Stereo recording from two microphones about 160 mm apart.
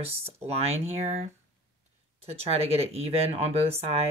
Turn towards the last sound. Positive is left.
turn(degrees=-40)  # may be behind; listen again after turning